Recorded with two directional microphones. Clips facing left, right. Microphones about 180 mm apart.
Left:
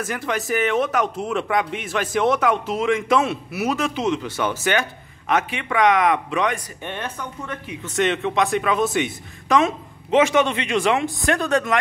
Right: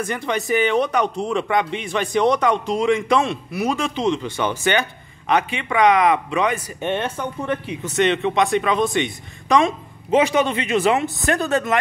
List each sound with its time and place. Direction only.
0.0 s speech: centre (ahead or behind)
6.8 s speech: 25° right (ahead or behind)
7.8 s speech: centre (ahead or behind)